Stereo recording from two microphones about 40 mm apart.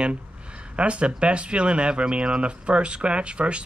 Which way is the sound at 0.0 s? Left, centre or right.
Right.